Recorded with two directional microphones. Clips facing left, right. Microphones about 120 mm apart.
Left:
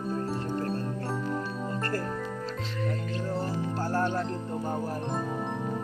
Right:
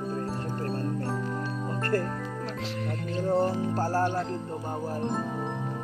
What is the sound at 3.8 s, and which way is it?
Music, 35° right (ahead or behind).